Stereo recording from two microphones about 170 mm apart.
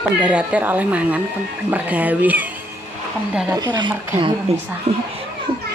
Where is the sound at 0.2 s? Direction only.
5° right (ahead or behind).